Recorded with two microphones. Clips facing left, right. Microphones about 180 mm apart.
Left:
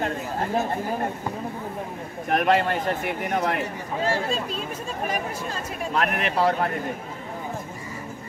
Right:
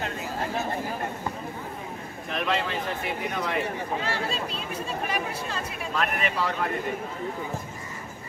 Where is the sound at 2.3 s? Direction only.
55° left (ahead or behind).